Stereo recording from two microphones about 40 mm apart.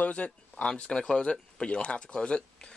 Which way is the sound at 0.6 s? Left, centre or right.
Left.